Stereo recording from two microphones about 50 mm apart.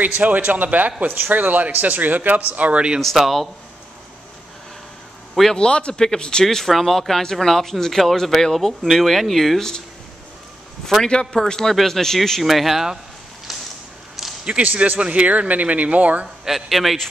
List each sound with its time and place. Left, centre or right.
0.0 s a man's voice: right
3.2 s speech: centre
5.3 s a man's voice: centre
5.6 s a man's voice: centre
6.4 s speech: centre
11.1 s a man's voice: centre
13.5 s a sound: centre
15.0 s speech: right
16.4 s speech: centre